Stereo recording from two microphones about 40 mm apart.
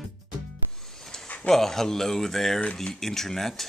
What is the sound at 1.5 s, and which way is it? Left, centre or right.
Speech, centre.